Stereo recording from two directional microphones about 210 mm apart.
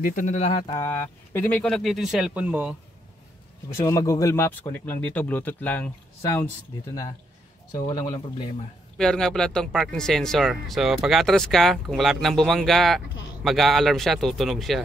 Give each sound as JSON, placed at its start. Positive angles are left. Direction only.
{"t": 0.0, "sound": "speech", "side_deg": 40}
{"t": 0.7, "sound": "speech", "side_deg": 10}
{"t": 3.8, "sound": "speech", "side_deg": 15}
{"t": 8.0, "sound": "speech", "side_deg": 20}
{"t": 8.9, "sound": "speech", "side_deg": 5}